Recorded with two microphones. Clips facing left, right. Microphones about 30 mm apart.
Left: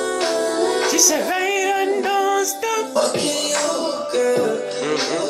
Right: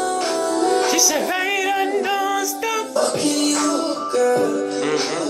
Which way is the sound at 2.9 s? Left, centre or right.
Left.